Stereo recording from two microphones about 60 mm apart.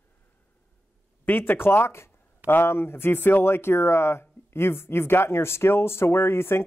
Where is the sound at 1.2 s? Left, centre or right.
Left.